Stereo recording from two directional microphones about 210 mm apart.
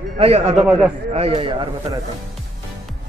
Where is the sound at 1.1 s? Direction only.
25° right (ahead or behind).